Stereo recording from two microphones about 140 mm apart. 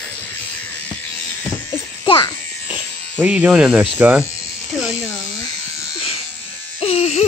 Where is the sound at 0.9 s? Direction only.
10° left (ahead or behind).